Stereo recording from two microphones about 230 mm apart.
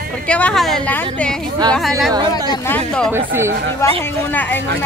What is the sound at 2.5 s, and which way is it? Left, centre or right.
Speech, centre.